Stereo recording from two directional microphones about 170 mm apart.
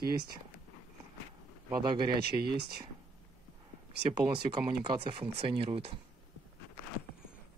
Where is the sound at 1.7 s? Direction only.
25° right (ahead or behind).